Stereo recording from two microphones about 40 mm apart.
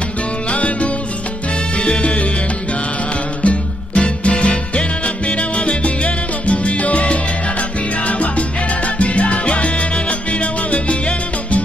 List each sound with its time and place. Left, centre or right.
1.8 s salsa music: left
3.4 s music: left
5.7 s salsa music: left
8.1 s music: left
10.4 s salsa music: left